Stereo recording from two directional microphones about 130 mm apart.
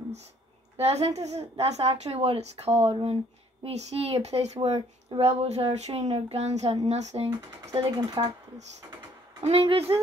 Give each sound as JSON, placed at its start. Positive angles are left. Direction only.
{"t": 0.7, "sound": "a woman's voice", "side_deg": -50}
{"t": 4.6, "sound": "a woman's voice", "side_deg": -45}
{"t": 8.0, "sound": "speech", "side_deg": -30}
{"t": 9.4, "sound": "a woman's voice", "side_deg": -50}